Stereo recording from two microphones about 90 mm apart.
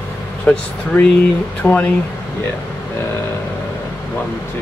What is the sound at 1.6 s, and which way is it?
Speech, 20° left (ahead or behind).